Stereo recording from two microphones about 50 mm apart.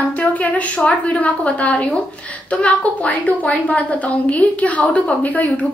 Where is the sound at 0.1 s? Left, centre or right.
Left.